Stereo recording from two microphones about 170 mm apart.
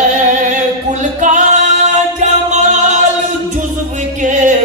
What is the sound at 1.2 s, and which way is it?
Music, 45° right (ahead or behind).